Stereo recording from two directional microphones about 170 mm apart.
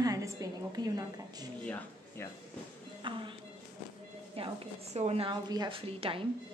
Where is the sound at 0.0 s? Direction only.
20° right (ahead or behind).